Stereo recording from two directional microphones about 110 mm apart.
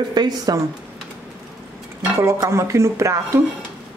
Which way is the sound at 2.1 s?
25° right (ahead or behind).